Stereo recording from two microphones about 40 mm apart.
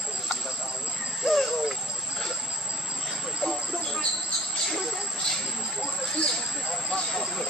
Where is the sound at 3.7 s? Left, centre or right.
Centre.